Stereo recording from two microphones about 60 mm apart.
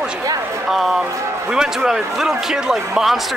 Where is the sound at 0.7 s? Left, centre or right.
Centre.